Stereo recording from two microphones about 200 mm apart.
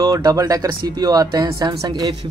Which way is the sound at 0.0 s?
20° right (ahead or behind).